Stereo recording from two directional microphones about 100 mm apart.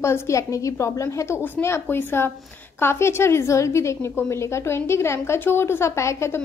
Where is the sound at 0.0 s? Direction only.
30° left (ahead or behind).